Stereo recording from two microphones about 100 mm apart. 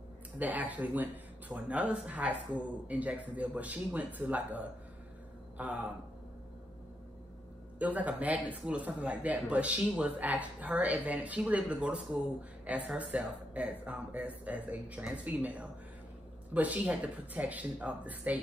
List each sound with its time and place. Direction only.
0.4 s speech: 15° right (ahead or behind)
7.8 s speech: 15° right (ahead or behind)